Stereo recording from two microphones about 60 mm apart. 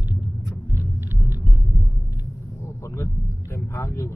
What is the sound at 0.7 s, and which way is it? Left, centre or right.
Rumble, right.